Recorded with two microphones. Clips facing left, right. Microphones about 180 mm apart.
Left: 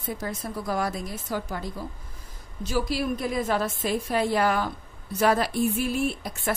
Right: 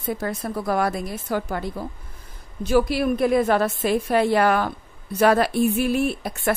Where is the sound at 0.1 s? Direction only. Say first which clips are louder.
Right 5 dB; 60° right (ahead or behind).